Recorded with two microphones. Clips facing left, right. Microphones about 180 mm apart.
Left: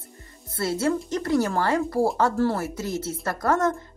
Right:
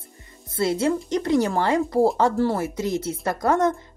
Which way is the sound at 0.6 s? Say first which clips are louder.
Right 2 dB; 15° right (ahead or behind).